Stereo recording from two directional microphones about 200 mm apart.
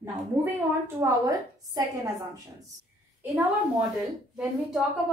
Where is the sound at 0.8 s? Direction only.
15° right (ahead or behind).